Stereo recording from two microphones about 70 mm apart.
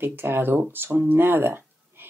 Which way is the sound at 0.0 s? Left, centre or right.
Right.